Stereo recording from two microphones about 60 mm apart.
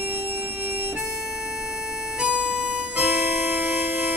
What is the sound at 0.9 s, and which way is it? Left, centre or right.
Harmonica, centre.